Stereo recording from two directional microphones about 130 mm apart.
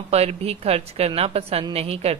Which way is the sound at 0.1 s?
50° right (ahead or behind).